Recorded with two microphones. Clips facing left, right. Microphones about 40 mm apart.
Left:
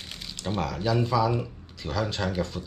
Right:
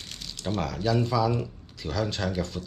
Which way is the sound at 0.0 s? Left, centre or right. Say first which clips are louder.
Left 1 dB; centre.